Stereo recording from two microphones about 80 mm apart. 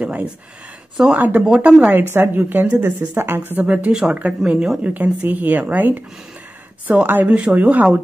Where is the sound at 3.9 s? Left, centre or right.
Centre.